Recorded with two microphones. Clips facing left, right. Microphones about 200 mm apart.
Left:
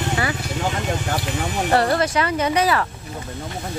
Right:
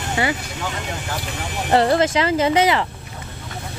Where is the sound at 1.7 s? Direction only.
25° right (ahead or behind).